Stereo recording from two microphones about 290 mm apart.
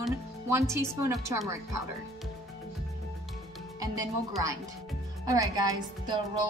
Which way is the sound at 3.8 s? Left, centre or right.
Centre.